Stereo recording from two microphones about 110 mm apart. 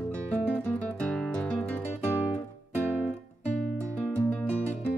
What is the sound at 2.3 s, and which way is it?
Music, 15° left (ahead or behind).